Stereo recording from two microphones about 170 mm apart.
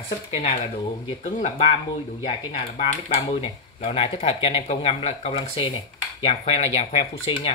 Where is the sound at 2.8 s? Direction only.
35° left (ahead or behind).